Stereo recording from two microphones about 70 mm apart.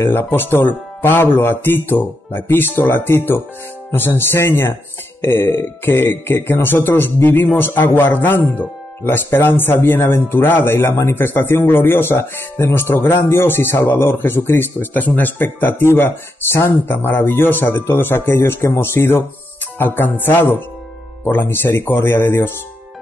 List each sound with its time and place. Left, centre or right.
0.0 s speech: left